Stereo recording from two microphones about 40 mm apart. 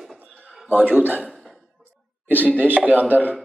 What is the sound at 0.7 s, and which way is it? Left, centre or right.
Speech, right.